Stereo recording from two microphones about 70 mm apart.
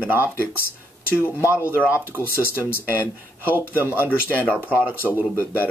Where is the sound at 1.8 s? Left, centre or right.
Right.